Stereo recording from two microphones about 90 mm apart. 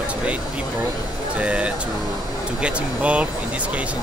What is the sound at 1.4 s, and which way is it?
Speech, 15° right (ahead or behind).